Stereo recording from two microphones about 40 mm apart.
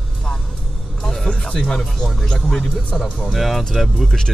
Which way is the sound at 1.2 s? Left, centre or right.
Left.